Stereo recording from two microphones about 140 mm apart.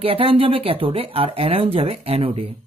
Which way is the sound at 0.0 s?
40° right (ahead or behind).